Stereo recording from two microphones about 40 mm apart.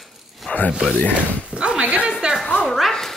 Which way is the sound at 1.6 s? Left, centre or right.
Right.